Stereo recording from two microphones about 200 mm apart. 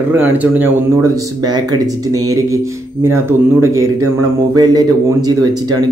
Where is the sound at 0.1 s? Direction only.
10° right (ahead or behind).